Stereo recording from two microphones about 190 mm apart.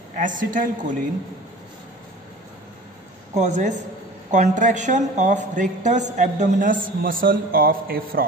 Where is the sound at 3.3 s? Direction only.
40° right (ahead or behind).